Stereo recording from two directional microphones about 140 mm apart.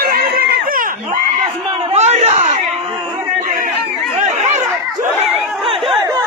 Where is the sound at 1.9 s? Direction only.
50° right (ahead or behind).